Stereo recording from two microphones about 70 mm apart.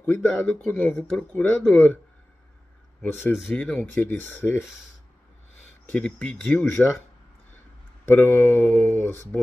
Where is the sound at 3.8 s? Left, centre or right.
Left.